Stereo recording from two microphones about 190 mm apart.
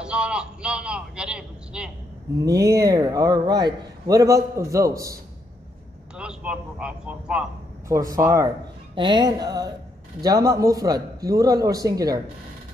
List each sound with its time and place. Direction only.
0.0 s a man's voice: 5° right (ahead or behind)
2.4 s a man's voice: 20° right (ahead or behind)
6.1 s a man's voice: 5° right (ahead or behind)
7.9 s a man's voice: 15° right (ahead or behind)